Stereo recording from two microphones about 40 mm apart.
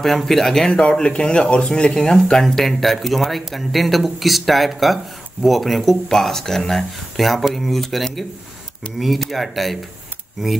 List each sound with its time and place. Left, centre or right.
0.0 s speech: centre
0.9 s speech: left
1.7 s speech: centre